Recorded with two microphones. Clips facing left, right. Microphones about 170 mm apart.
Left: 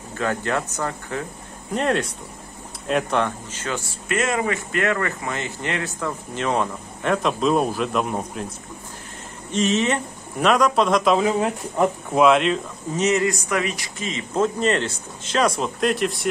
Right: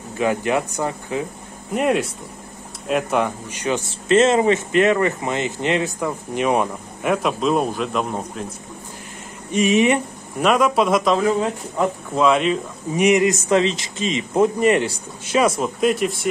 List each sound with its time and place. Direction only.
0.2 s speech: 15° right (ahead or behind); by 8.5 s centre (ahead or behind)
9.5 s speech: 10° right (ahead or behind)
12.2 s speech: centre (ahead or behind)
13.0 s speech: 15° right (ahead or behind); by 16.3 s centre (ahead or behind)